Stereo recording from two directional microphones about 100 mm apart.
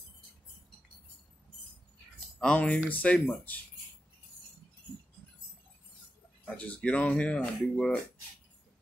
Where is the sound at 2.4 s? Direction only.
10° left (ahead or behind).